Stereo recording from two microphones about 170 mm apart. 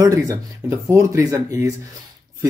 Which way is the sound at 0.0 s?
20° right (ahead or behind).